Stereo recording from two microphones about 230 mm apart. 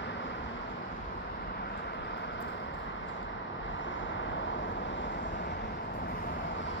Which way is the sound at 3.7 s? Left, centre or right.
Left.